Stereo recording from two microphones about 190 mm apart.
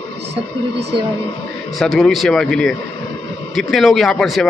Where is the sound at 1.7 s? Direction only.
Centre (ahead or behind).